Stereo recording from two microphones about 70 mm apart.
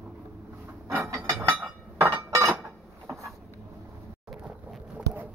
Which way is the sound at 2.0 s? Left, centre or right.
Right.